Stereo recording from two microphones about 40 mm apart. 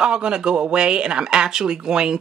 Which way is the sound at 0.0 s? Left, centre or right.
Right.